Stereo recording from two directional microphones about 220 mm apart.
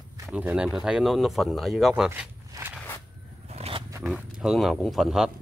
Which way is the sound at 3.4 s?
30° right (ahead or behind).